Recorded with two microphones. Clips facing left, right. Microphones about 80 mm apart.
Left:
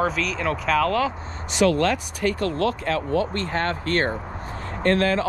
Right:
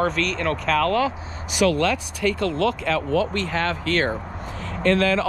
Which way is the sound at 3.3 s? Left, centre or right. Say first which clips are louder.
Right 1 dB; right.